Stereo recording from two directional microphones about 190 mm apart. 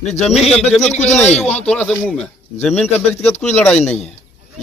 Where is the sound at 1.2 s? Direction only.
35° left (ahead or behind).